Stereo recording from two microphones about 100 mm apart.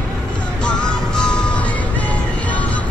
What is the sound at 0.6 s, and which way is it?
Music, 10° left (ahead or behind).